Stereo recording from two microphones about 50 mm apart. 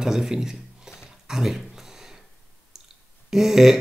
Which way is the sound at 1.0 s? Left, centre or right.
Centre.